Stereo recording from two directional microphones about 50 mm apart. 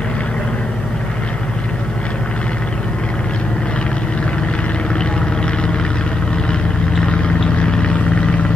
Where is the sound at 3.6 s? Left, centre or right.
Left.